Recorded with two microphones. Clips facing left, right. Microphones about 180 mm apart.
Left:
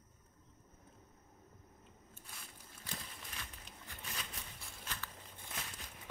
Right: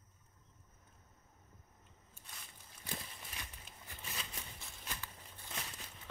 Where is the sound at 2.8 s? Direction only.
15° right (ahead or behind).